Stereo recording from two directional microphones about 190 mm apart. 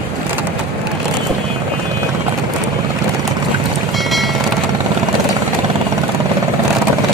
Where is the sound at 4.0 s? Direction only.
Centre (ahead or behind).